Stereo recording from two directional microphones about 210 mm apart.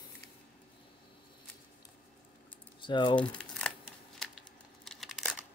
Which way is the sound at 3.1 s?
5° left (ahead or behind).